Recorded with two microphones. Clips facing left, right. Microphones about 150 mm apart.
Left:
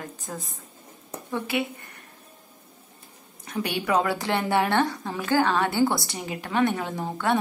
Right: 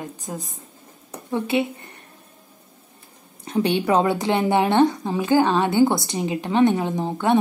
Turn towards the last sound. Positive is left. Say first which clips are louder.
# right 5 dB
turn(degrees=-20)  # may be behind; listen again after turning